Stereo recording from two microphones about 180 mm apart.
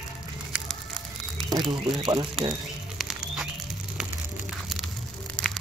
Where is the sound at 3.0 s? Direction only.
Centre (ahead or behind).